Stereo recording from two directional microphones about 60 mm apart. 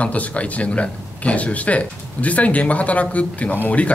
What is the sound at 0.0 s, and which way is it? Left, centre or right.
Speech, left.